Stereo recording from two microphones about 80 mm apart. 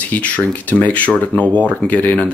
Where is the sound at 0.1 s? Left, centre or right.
Centre.